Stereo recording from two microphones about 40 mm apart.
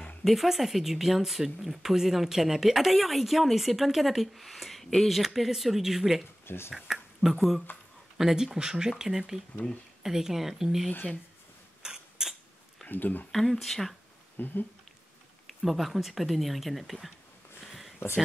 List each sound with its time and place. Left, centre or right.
0.2 s speech: centre
6.4 s speech: left
6.9 s a sound: centre
7.2 s speech: centre
11.8 s mechanisms: centre
12.8 s speech: left
13.3 s speech: centre
14.3 s speech: left
15.4 s speech: centre
17.6 s a sound: centre